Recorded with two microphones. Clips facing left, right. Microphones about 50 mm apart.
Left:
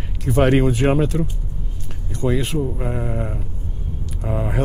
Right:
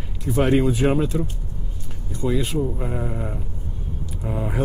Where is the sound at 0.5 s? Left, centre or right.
Left.